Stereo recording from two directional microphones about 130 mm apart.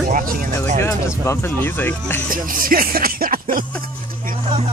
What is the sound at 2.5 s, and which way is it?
Music, 90° right.